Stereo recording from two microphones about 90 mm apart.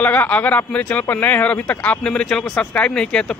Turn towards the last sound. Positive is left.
turn(degrees=10)  # may be behind; listen again after turning